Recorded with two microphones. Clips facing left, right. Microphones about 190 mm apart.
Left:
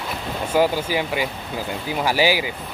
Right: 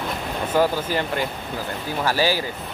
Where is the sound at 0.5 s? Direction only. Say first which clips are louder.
Left 1 dB; 10° left (ahead or behind).